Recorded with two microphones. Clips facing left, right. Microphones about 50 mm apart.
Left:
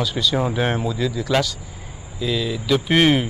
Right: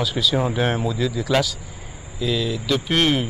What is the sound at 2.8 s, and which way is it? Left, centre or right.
Speech, centre.